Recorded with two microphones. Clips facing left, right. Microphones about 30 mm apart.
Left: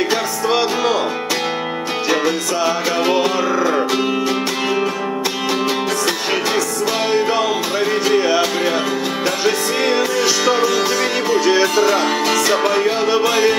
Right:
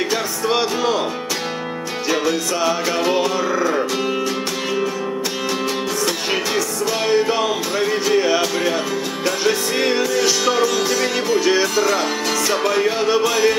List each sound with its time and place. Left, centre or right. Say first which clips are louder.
0.5 s music: left 2 dB; centre
3.0 s music: left 4 dB; centre
7.2 s music: left 1 dB; centre